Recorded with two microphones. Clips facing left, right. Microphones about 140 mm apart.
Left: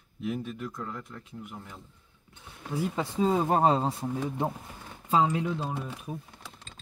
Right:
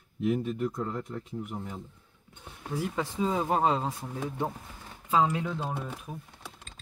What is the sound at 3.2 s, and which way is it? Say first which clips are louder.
Speech: left 3 dB; 40° left (ahead or behind).